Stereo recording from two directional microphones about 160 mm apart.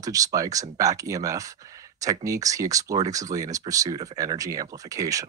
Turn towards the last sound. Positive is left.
turn(degrees=-20)  # may be behind; listen again after turning